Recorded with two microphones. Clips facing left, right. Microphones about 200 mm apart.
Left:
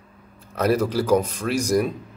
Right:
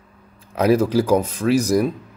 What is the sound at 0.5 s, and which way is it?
Speech, 10° right (ahead or behind).